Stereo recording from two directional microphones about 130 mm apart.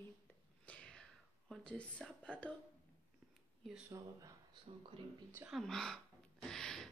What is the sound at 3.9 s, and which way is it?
Speech, 25° right (ahead or behind).